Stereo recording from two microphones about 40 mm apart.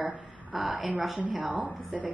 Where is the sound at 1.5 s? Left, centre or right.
Right.